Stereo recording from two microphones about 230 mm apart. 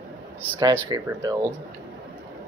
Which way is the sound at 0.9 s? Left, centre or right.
Centre.